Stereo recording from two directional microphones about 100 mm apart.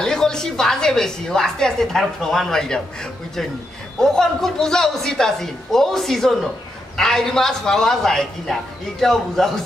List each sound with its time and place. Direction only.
0.0 s a woman's voice: 5° left (ahead or behind)
4.0 s a woman's voice: 5° left (ahead or behind)